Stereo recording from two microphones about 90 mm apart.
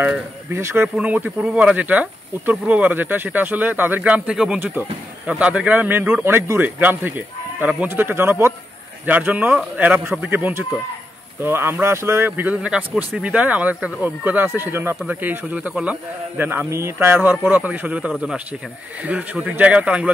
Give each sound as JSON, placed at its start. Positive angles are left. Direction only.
{"t": 0.5, "sound": "a man's voice", "side_deg": -30}
{"t": 0.9, "sound": "a man's voice", "side_deg": -15}